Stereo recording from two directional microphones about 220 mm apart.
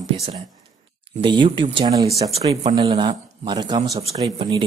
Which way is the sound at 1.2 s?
20° right (ahead or behind).